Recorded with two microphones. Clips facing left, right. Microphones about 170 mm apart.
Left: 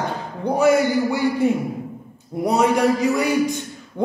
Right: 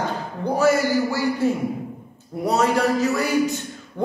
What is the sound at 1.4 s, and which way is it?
Speech, 15° left (ahead or behind).